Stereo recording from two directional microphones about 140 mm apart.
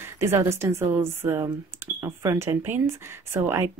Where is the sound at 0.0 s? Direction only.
20° right (ahead or behind).